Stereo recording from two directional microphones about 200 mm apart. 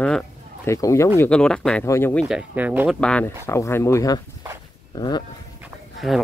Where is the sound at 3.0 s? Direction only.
5° left (ahead or behind); by 5.2 s 20° left (ahead or behind).